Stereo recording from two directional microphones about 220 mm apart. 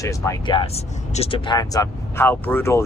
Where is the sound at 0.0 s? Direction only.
15° left (ahead or behind).